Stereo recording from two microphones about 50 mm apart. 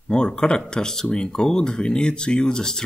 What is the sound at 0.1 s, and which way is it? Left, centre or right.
Speech, centre.